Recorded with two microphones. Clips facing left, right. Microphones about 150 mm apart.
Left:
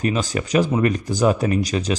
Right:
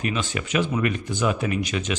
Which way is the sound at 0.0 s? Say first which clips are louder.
Left 5 dB; 40° left (ahead or behind).